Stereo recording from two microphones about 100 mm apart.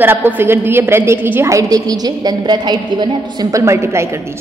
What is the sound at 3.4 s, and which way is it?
Speech, 30° right (ahead or behind).